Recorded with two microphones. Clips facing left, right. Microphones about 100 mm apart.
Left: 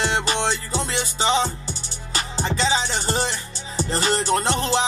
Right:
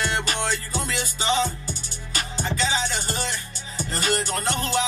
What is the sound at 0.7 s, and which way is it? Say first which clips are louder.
Music: left 3 dB; 30° left (ahead or behind).